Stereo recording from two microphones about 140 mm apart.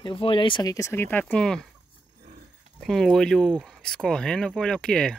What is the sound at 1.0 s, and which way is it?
Speech, 10° left (ahead or behind).